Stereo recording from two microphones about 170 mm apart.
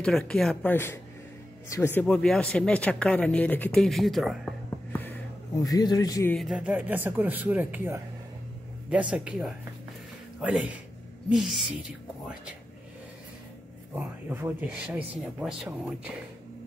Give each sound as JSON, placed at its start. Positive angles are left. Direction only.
{"t": 0.0, "sound": "speech", "side_deg": 5}
{"t": 4.9, "sound": "music", "side_deg": 10}
{"t": 6.3, "sound": "speech", "side_deg": -5}
{"t": 13.9, "sound": "speech", "side_deg": -10}